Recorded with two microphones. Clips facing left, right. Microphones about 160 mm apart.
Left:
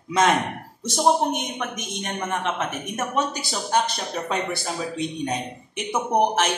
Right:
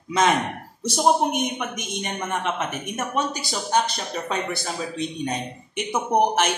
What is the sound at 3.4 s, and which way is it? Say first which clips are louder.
A man's voice: even; centre (ahead or behind).